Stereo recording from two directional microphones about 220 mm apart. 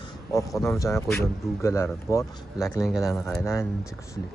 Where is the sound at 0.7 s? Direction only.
15° left (ahead or behind).